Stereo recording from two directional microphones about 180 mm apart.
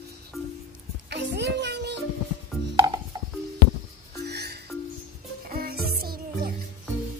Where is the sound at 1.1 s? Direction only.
70° right (ahead or behind).